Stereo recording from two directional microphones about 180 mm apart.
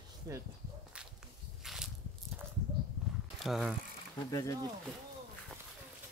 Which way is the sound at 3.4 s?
Centre (ahead or behind).